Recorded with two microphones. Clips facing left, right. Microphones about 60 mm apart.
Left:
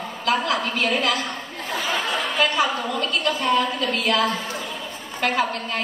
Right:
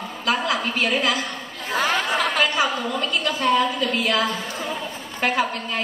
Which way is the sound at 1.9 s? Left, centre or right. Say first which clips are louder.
Right 1 dB; right.